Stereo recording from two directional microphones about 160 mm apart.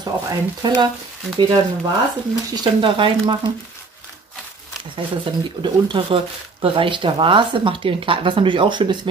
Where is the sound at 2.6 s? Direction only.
30° right (ahead or behind).